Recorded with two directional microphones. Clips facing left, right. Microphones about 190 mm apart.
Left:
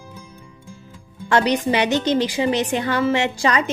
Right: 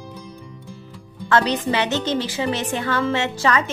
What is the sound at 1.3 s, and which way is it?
A woman's voice, 15° left (ahead or behind).